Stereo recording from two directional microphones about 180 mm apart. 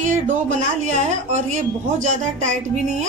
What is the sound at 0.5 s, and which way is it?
A woman's voice, 40° right (ahead or behind).